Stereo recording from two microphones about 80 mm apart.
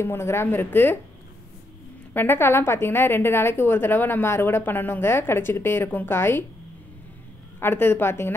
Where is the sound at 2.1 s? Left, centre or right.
Left.